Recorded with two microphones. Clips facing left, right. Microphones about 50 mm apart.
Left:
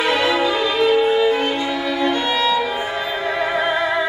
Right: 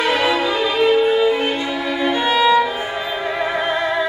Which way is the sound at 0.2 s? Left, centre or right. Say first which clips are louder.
Even; centre.